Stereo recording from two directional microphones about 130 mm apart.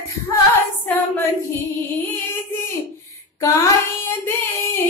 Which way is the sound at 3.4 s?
20° left (ahead or behind).